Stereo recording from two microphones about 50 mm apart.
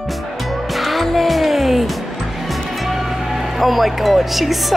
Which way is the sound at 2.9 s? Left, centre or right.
Centre.